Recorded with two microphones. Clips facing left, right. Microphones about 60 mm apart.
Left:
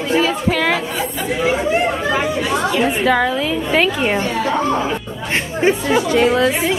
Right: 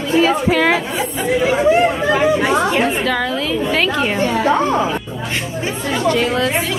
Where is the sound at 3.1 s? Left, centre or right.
Centre.